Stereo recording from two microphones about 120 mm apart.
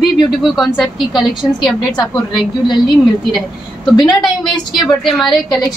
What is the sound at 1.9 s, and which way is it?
A woman's voice, 35° left (ahead or behind).